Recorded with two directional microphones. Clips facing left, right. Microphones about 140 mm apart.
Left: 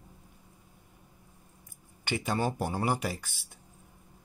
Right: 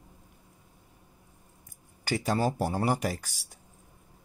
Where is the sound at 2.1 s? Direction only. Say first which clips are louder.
Right 3 dB; 40° right (ahead or behind).